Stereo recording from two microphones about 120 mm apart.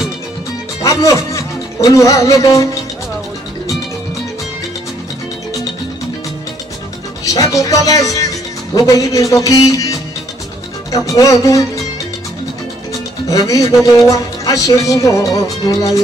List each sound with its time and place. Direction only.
0.8 s speech: 25° left (ahead or behind)
7.2 s speech: 30° left (ahead or behind)
13.3 s speech: 30° left (ahead or behind)